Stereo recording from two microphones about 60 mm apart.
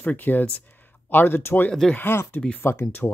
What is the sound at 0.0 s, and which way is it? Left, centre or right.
Speech, left.